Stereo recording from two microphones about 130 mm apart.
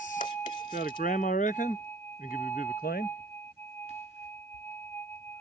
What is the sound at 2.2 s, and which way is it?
Speech, 90° left.